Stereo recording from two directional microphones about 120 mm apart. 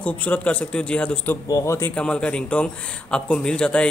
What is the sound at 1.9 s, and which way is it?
A man's voice, 10° left (ahead or behind).